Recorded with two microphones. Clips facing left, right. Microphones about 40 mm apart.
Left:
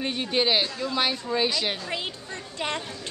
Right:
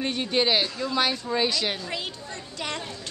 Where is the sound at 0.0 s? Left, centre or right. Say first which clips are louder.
Right 1 dB; centre.